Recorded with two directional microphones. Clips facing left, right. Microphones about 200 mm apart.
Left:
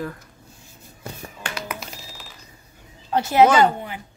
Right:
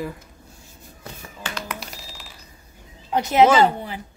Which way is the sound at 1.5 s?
Centre (ahead or behind).